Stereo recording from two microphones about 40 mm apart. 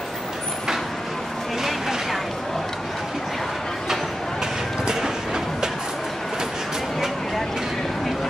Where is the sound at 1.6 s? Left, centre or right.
Centre.